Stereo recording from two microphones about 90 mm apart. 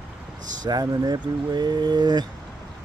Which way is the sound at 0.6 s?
45° right (ahead or behind).